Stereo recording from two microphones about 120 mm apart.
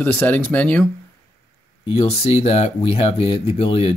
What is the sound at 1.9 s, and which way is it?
Speech, 55° left (ahead or behind).